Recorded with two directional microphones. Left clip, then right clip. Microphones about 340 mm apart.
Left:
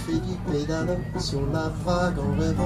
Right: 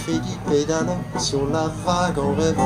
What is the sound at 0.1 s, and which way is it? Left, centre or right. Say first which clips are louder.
Speech: right 6 dB; right.